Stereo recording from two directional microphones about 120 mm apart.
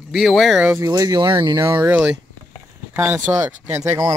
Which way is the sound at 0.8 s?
30° right (ahead or behind).